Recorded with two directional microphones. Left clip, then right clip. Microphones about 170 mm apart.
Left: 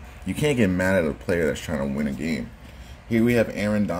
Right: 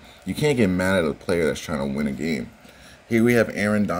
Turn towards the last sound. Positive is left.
turn(degrees=-30)  # may be behind; listen again after turning